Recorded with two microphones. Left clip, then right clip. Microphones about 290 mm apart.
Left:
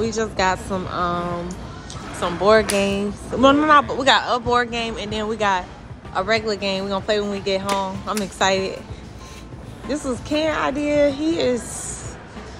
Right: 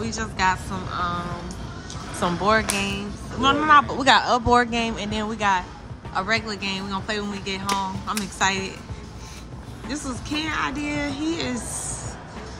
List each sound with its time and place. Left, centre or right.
0.0 s speech: centre
2.1 s speech: centre
9.8 s speech: centre